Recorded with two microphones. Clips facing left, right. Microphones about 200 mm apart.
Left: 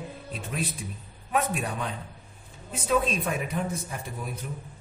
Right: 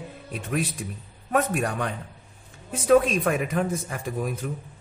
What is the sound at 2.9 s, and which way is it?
Speech, 80° right.